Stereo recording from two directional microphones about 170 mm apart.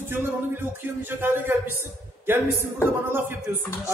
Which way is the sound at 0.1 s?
15° right (ahead or behind).